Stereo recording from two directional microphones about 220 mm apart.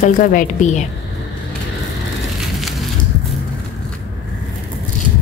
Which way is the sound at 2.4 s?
Centre (ahead or behind).